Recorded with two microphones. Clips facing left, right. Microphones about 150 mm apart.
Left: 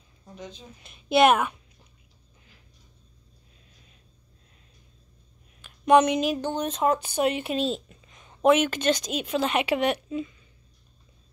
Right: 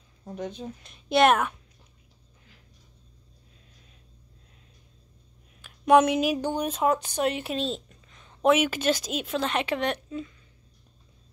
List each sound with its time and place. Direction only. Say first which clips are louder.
0.3 s speech: right 7 dB; 60° right (ahead or behind)
0.8 s speech: left 1 dB; 5° left (ahead or behind)
5.6 s speech: even; 5° right (ahead or behind)
8.1 s a sound: even; 15° left (ahead or behind)
8.4 s speech: left 2 dB; 5° right (ahead or behind)